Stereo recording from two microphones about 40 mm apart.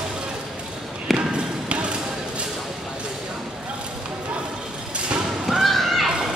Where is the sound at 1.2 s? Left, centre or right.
Right.